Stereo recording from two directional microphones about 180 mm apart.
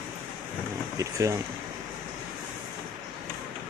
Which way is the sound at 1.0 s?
20° right (ahead or behind).